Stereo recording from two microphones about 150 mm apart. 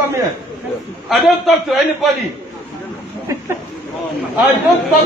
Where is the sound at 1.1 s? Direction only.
Centre (ahead or behind).